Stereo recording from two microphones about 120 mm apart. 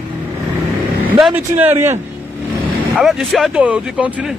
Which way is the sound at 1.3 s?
15° right (ahead or behind).